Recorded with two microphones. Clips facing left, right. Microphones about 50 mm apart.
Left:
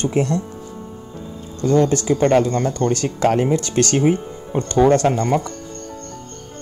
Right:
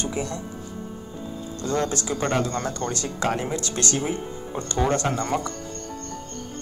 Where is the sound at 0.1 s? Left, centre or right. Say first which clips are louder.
Left 9 dB; left.